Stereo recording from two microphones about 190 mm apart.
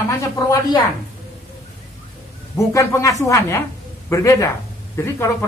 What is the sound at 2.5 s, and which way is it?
A woman's voice, 15° left (ahead or behind).